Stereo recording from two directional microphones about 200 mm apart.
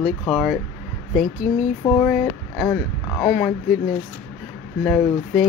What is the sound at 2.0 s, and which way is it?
Speech, centre (ahead or behind).